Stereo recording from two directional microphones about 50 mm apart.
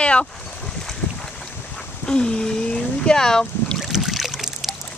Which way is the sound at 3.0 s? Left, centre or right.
Centre.